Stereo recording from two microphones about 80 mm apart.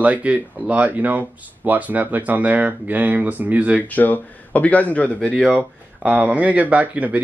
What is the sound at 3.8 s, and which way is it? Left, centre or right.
Speech, left.